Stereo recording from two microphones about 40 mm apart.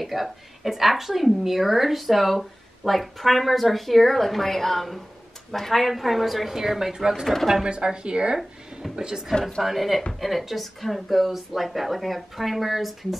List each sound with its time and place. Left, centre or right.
0.0 s a woman's voice: centre
9.6 s a woman's voice: centre